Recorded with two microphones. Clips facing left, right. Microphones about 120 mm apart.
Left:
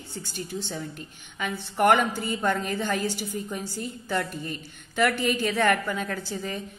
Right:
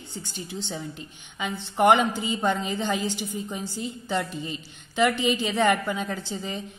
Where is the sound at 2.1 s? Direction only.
50° left (ahead or behind).